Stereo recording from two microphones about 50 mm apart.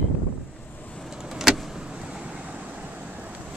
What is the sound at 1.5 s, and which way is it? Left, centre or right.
Vehicle, centre.